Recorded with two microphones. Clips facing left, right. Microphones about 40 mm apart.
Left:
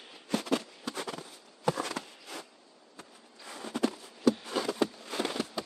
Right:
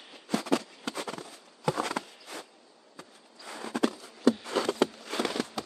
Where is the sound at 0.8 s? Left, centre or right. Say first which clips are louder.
Right 2 dB; right.